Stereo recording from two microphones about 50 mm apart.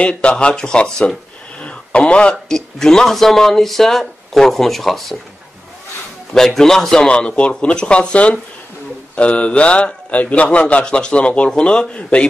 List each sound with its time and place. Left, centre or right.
0.0 s a man's voice: centre
1.6 s a sound: left
2.3 s speech: centre
6.3 s a man's voice: centre; by 12.3 s left